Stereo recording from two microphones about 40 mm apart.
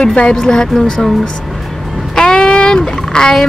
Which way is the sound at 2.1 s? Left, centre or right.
Centre.